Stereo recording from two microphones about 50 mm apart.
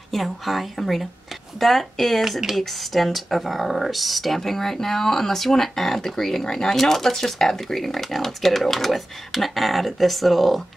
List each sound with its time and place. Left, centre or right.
0.1 s speech: centre